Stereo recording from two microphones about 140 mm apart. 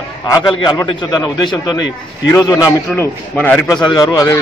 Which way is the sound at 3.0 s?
10° left (ahead or behind).